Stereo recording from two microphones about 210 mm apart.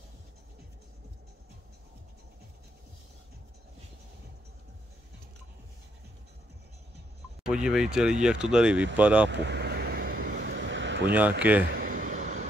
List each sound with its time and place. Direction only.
7.4 s speech: 5° right (ahead or behind)
9.3 s vehicle: 55° right (ahead or behind)
11.1 s speech: 5° right (ahead or behind)
11.7 s a sound: 40° right (ahead or behind)